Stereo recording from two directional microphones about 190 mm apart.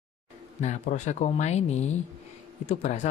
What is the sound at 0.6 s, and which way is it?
Speech, 40° left (ahead or behind).